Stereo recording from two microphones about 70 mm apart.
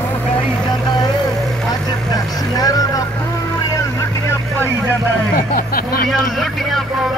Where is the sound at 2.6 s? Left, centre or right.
Left.